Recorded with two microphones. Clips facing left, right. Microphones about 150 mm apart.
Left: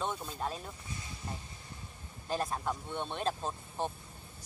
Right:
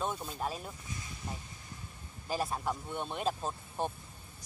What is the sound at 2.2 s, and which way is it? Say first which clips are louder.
Speech: even; 5° right (ahead or behind).